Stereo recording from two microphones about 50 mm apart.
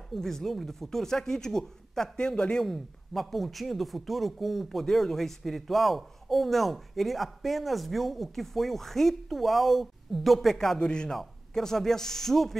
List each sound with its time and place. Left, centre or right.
0.1 s speech: centre
2.6 s speech: centre
10.8 s speech: centre
11.1 s speech: centre